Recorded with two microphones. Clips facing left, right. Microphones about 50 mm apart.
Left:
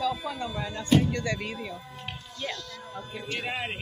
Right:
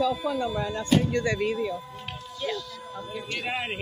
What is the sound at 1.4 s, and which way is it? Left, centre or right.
Speech, centre.